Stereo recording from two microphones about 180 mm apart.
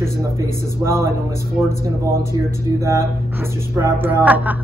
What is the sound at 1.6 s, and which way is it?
Speech, 10° right (ahead or behind).